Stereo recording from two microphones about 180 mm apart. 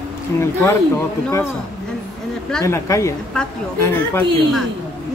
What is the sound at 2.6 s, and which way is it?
Speech, 15° left (ahead or behind).